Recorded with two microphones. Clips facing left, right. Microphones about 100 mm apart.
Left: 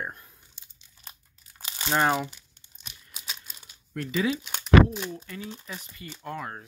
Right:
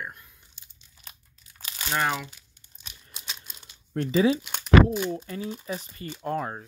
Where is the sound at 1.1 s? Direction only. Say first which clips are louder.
Left 1 dB; 25° left (ahead or behind).